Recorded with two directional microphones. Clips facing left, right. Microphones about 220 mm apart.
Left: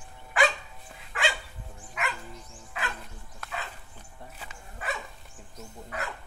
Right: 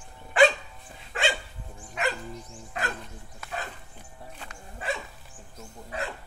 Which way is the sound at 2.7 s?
40° right (ahead or behind).